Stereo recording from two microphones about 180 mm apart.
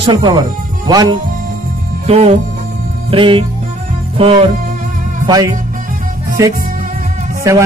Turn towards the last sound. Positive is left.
turn(degrees=-15)  # may be behind; listen again after turning